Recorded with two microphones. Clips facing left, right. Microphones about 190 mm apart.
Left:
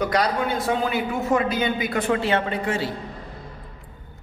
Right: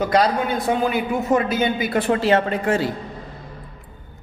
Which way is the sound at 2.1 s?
40° right (ahead or behind).